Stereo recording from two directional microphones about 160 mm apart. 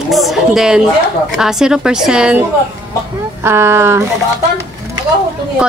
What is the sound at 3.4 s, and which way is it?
Speech, 15° right (ahead or behind).